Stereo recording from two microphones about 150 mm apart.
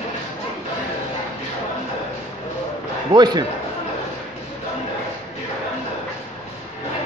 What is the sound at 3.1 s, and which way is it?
Speech, 30° right (ahead or behind).